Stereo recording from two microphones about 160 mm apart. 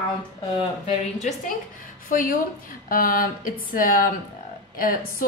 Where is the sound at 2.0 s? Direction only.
60° left (ahead or behind).